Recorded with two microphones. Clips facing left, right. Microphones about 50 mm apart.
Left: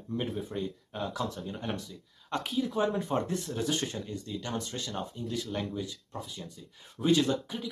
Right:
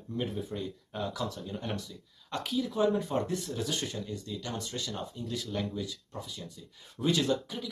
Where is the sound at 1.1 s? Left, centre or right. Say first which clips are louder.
Left 1 dB; left.